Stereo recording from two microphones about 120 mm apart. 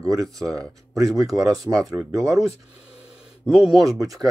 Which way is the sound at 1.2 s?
30° right (ahead or behind).